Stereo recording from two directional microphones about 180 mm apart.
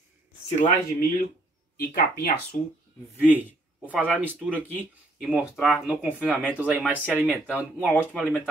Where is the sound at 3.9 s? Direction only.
10° right (ahead or behind).